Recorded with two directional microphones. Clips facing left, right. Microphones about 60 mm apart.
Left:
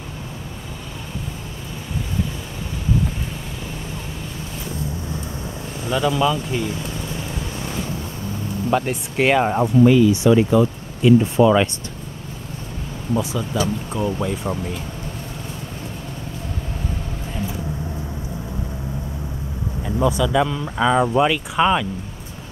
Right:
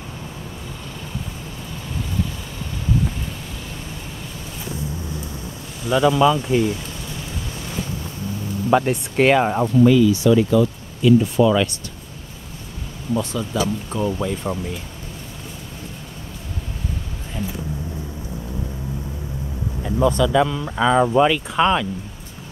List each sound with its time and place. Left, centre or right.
5.9 s speech: centre
8.7 s speech: centre
9.8 s speech: centre
13.1 s speech: centre
19.8 s speech: centre